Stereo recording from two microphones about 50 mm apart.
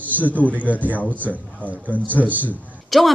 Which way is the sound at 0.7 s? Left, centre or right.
Left.